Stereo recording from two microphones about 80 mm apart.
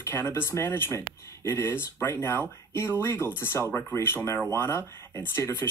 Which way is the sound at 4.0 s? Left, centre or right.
Left.